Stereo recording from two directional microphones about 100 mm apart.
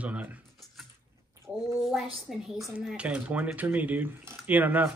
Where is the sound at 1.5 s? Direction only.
5° right (ahead or behind).